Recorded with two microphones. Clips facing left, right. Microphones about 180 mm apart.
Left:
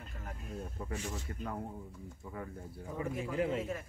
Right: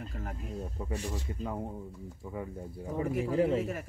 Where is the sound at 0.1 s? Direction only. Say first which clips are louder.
Right 6 dB; 45° right (ahead or behind).